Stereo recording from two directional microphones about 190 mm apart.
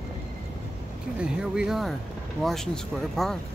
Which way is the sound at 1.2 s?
5° right (ahead or behind).